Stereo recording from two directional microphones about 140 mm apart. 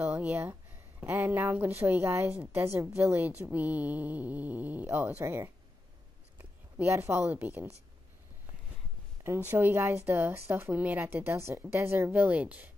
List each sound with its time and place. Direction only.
0.0 s a woman's voice: 15° right (ahead or behind)
2.3 s a woman's voice: 5° right (ahead or behind)
2.6 s a woman's voice: 20° right (ahead or behind)
9.2 s a woman's voice: 15° right (ahead or behind)